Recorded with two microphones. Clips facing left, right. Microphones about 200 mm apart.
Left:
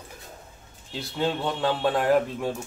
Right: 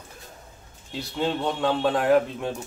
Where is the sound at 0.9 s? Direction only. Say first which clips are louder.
Right 1 dB; centre (ahead or behind).